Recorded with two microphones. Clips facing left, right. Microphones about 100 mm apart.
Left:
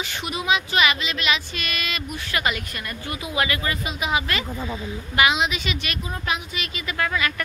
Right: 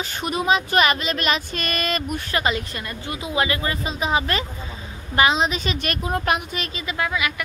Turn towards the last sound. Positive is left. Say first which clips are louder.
# even
turn(degrees=-15)  # may be behind; listen again after turning